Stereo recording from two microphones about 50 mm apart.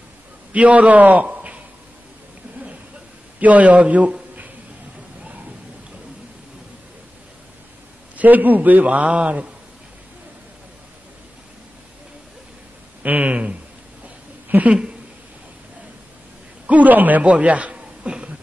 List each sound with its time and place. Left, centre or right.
0.5 s a man's voice: right
3.3 s a man's voice: right
8.2 s a man's voice: right
8.8 s a man's voice: right
13.0 s a man's voice: right
14.0 s a sound: right
16.6 s speech: right